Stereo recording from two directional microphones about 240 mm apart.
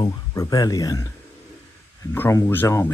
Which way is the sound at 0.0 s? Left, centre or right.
Centre.